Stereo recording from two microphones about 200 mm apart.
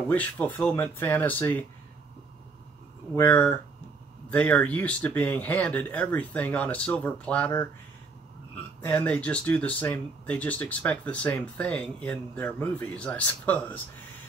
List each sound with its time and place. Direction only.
0.1 s speech: 10° left (ahead or behind)
3.2 s speech: 10° left (ahead or behind)
8.8 s speech: 10° left (ahead or behind)